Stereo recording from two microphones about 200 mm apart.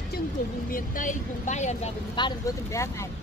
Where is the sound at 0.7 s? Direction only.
45° left (ahead or behind).